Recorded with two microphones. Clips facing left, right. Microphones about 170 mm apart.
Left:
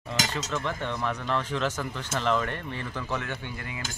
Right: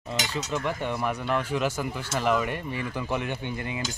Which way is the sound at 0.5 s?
10° right (ahead or behind).